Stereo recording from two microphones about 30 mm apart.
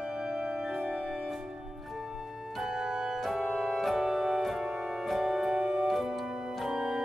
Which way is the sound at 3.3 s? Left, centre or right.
Centre.